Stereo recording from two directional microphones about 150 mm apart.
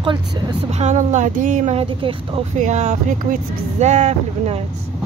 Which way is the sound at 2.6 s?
50° right (ahead or behind).